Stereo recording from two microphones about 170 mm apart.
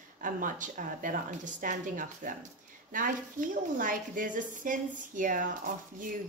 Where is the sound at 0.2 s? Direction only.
50° right (ahead or behind).